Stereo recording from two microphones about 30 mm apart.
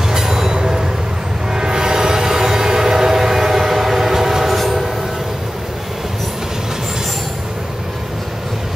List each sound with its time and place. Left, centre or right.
0.1 s train: centre
0.6 s vehicle: right
1.5 s train: right
4.6 s train: centre